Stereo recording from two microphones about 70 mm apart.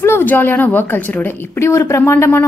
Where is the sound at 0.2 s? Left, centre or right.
Left.